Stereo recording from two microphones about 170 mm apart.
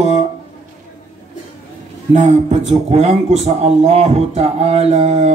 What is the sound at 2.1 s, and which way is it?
A man's voice, 45° right (ahead or behind).